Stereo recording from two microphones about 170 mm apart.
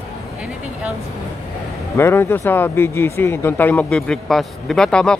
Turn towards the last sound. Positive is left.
turn(degrees=5)  # may be behind; listen again after turning